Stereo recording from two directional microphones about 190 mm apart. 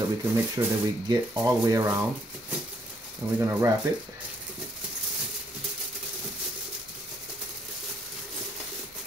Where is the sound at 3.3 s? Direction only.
15° right (ahead or behind).